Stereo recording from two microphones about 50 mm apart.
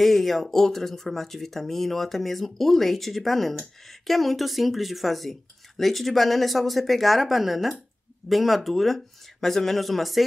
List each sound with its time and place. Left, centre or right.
0.0 s speech: centre